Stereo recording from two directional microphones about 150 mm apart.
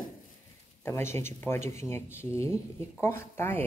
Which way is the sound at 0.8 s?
15° left (ahead or behind).